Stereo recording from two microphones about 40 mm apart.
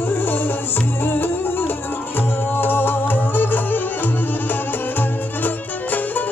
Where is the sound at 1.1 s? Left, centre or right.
Left.